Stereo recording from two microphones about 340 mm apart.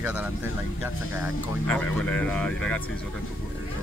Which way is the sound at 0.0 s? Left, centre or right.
Centre.